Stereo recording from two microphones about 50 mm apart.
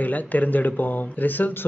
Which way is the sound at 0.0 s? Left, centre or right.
Left.